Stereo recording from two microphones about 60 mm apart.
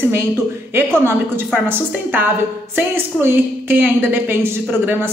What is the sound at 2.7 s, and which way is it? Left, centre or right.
A woman's voice, right.